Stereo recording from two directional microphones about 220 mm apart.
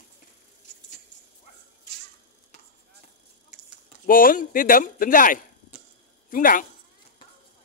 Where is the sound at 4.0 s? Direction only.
40° left (ahead or behind).